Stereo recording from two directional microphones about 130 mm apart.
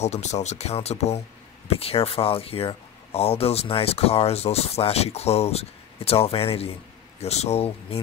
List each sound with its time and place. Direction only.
0.0 s speech: 60° left (ahead or behind)